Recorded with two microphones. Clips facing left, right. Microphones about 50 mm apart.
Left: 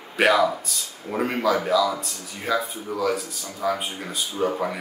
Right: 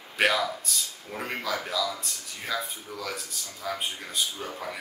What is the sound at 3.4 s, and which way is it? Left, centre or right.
Speech, left.